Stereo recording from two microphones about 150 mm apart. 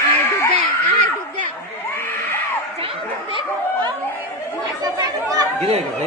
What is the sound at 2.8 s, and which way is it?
Chatter, 35° right (ahead or behind).